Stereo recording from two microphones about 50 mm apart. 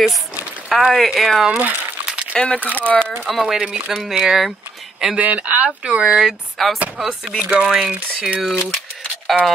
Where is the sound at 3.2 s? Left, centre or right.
Centre.